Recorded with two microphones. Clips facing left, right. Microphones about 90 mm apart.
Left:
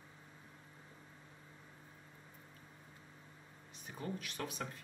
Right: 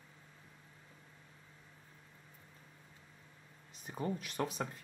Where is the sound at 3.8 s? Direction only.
35° right (ahead or behind).